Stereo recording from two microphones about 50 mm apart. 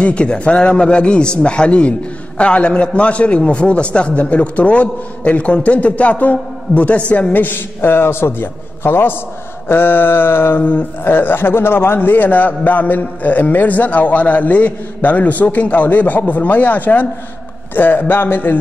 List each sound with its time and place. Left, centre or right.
0.0 s a man's voice: left
7.4 s a man's voice: left
10.6 s a man's voice: left